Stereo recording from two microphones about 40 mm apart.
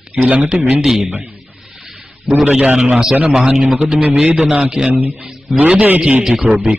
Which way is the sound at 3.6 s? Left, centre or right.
Centre.